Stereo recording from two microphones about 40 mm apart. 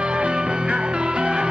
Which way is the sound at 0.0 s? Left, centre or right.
Right.